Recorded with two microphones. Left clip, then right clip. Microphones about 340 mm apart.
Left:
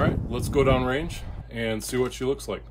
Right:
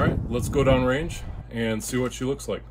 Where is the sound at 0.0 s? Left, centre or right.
Centre.